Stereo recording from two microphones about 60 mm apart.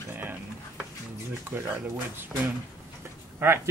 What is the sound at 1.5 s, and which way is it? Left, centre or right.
Speech, right.